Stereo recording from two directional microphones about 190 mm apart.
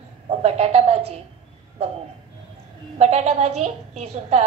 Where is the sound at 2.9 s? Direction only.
35° right (ahead or behind).